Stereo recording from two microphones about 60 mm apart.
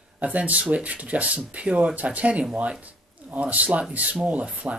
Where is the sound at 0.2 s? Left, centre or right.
Right.